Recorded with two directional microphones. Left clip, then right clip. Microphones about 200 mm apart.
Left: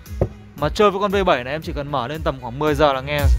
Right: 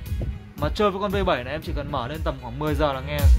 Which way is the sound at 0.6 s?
40° left (ahead or behind).